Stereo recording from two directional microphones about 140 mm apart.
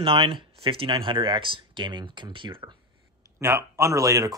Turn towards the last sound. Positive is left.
turn(degrees=-25)  # may be behind; listen again after turning